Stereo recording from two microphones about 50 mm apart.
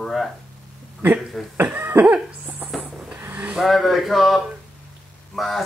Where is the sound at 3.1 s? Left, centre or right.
Right.